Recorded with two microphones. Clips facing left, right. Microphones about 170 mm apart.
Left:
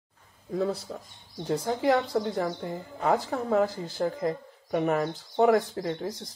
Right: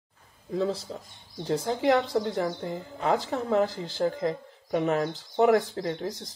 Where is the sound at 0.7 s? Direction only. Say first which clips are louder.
Even; 25° right (ahead or behind).